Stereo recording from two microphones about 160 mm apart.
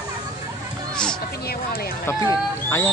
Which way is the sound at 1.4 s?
75° left (ahead or behind).